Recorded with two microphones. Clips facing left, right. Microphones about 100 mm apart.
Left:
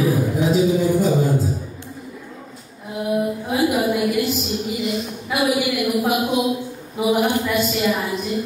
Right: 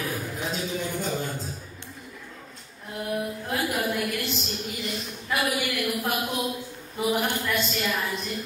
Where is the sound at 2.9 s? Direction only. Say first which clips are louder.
Left 8 dB; 10° left (ahead or behind).